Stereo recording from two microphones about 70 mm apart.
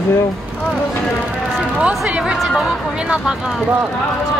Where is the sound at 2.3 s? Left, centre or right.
Centre.